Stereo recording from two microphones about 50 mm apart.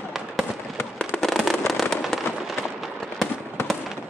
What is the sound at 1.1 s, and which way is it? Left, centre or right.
Fireworks, centre.